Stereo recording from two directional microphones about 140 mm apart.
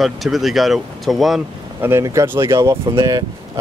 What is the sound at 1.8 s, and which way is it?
Speech, 20° right (ahead or behind).